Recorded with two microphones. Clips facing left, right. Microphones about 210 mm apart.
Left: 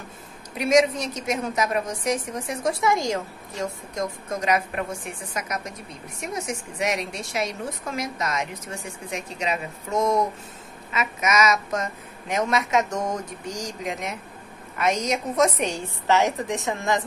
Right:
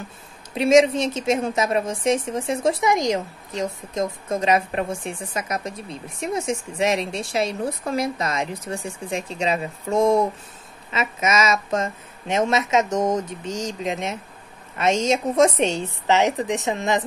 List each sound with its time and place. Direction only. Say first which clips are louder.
0.6 s a woman's voice: right 4 dB; 25° right (ahead or behind)